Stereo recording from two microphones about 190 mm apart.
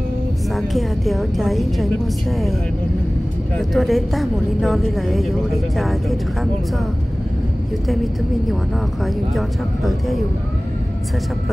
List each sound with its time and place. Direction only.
0.6 s a woman's voice: centre (ahead or behind)
3.5 s a woman's voice: centre (ahead or behind)
7.9 s a woman's voice: centre (ahead or behind)
9.8 s a woman's voice: centre (ahead or behind)